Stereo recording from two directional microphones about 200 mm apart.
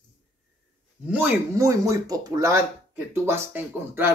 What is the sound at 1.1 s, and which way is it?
Speech, 10° right (ahead or behind).